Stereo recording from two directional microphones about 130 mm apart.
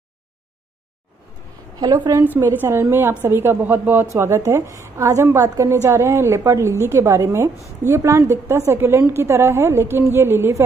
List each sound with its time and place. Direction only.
2.2 s a woman's voice: 15° right (ahead or behind)